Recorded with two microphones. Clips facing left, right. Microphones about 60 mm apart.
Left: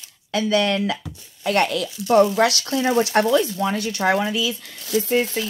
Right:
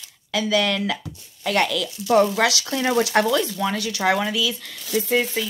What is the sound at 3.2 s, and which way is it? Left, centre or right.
Speech, left.